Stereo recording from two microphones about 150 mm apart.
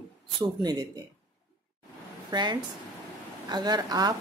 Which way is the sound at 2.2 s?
30° right (ahead or behind).